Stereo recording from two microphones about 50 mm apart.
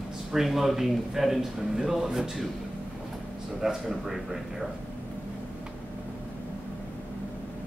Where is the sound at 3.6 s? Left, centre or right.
Centre.